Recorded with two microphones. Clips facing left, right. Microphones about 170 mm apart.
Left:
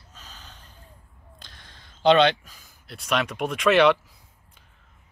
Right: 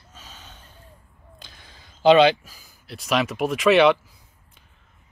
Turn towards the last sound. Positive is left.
turn(degrees=0)  # may be behind; listen again after turning